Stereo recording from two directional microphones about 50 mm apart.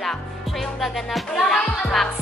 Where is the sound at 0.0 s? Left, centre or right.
Centre.